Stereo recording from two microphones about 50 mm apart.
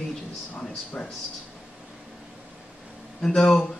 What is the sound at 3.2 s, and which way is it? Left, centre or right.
Speech, centre.